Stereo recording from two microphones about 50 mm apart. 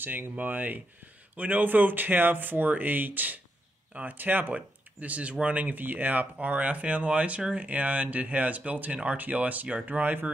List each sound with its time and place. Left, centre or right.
0.0 s speech: right